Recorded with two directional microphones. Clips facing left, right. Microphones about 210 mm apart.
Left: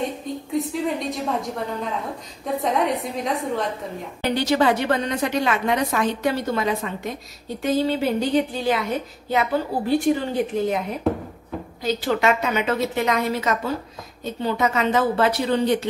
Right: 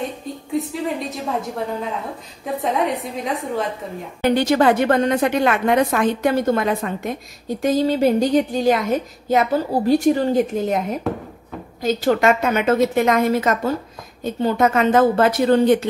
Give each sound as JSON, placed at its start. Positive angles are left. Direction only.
{"t": 0.5, "sound": "a woman's voice", "side_deg": 0}
{"t": 2.4, "sound": "a woman's voice", "side_deg": 0}
{"t": 4.2, "sound": "a woman's voice", "side_deg": -50}
{"t": 11.8, "sound": "a woman's voice", "side_deg": -45}